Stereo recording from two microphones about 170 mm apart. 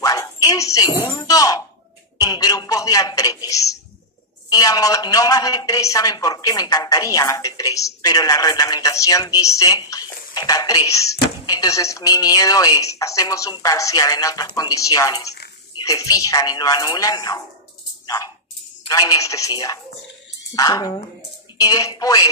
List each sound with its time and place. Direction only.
0.0 s music: 20° left (ahead or behind)
2.1 s speech: 20° left (ahead or behind)
18.0 s a sound: 20° left (ahead or behind)
18.9 s speech: 20° left (ahead or behind)